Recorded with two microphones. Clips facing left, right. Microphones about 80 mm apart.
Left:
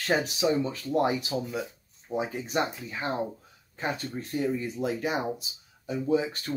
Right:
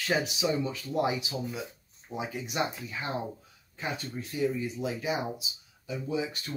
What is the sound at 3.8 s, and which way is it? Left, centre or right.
Speech, left.